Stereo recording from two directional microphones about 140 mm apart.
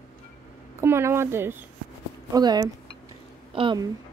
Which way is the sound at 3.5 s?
40° right (ahead or behind).